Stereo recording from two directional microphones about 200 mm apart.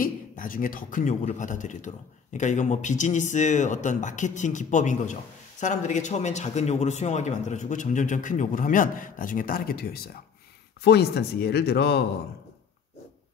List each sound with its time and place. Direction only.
0.0 s a man's voice: 45° left (ahead or behind)